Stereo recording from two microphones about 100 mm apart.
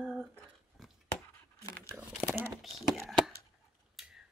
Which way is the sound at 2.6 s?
Centre (ahead or behind).